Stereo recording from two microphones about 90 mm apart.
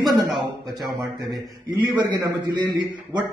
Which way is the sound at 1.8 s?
50° right (ahead or behind).